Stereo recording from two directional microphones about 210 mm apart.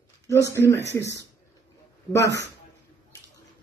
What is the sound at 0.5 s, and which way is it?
Speech, 15° left (ahead or behind).